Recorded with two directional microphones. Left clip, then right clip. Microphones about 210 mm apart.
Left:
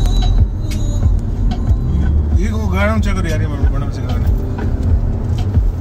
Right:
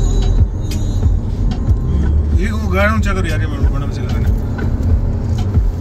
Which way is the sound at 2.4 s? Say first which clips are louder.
Right 3 dB; 20° left (ahead or behind).